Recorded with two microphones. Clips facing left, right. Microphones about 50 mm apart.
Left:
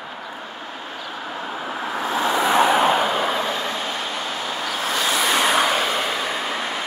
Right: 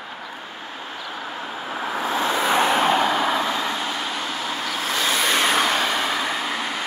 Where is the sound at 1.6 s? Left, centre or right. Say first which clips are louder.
Right 1 dB; centre.